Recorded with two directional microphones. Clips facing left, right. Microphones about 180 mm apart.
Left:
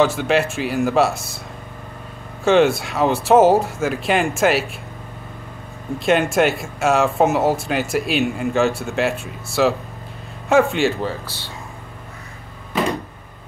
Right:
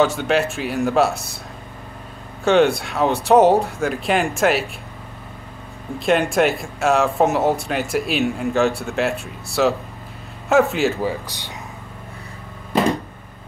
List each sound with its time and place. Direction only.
0.0 s speech: centre (ahead or behind)
2.4 s speech: centre (ahead or behind)
5.9 s speech: centre (ahead or behind)
11.1 s speech: 15° right (ahead or behind)